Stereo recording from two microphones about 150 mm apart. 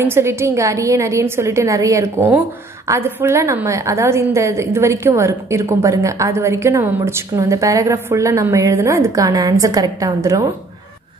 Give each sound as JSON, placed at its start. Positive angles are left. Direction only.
{"t": 0.0, "sound": "a woman's voice", "side_deg": -15}